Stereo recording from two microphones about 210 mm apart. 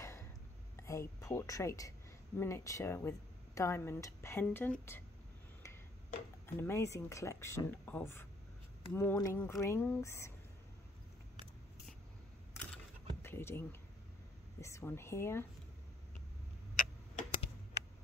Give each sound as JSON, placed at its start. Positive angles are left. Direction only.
{"t": 0.0, "sound": "a sound", "side_deg": 10}
{"t": 0.7, "sound": "speech", "side_deg": 15}
{"t": 6.4, "sound": "speech", "side_deg": 10}
{"t": 13.2, "sound": "speech", "side_deg": 10}
{"t": 16.7, "sound": "tick-tock", "side_deg": 35}